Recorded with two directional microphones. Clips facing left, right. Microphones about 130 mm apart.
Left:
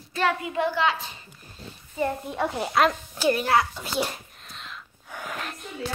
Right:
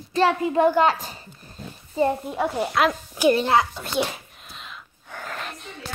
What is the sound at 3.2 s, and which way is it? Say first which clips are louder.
Speech: right 3 dB; 25° right (ahead or behind).